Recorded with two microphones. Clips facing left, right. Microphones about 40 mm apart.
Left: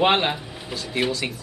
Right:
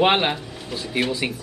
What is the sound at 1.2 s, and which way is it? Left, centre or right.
Speech, centre.